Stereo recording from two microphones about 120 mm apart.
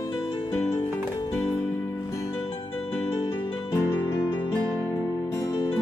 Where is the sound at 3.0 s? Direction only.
45° left (ahead or behind).